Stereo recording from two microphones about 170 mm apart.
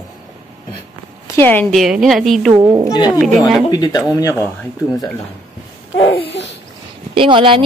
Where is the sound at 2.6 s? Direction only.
20° right (ahead or behind).